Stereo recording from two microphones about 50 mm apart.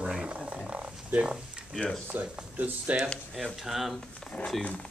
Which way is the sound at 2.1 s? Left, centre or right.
Right.